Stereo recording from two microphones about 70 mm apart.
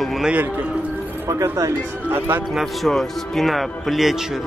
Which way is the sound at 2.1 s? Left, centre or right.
Right.